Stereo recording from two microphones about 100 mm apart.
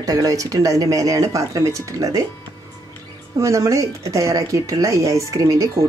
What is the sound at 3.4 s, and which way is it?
Speech, 30° right (ahead or behind).